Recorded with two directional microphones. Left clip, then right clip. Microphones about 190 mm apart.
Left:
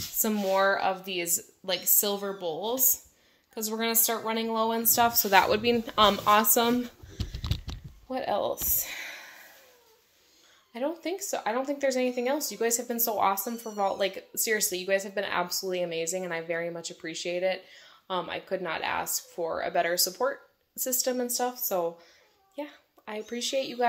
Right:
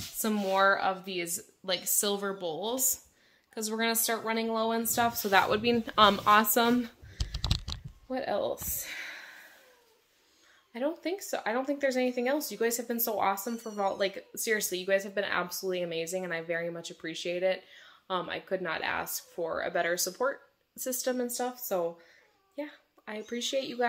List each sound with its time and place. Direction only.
0.2 s a woman's voice: 10° right (ahead or behind)
2.0 s a woman's voice: 20° right (ahead or behind); by 5.6 s 5° left (ahead or behind)
5.6 s speech: 10° right (ahead or behind)
8.1 s speech: 10° right (ahead or behind)
8.8 s a sound: 5° right (ahead or behind)
10.7 s speech: 10° right (ahead or behind)
22.6 s speech: 10° right (ahead or behind)